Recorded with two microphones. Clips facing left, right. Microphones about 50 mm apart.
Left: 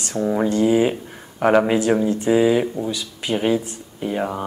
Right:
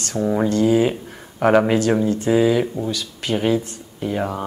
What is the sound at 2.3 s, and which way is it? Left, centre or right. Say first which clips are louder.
Speech: left 1 dB; centre.